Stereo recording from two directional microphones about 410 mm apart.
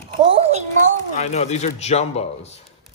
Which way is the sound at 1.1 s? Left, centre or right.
Centre.